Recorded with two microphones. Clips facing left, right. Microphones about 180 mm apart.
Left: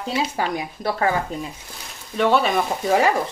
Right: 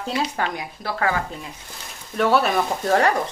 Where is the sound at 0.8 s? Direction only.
25° left (ahead or behind).